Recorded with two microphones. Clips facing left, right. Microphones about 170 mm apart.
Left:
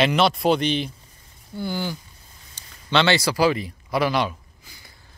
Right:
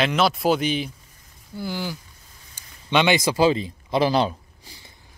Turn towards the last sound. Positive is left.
turn(degrees=-30)  # may be behind; listen again after turning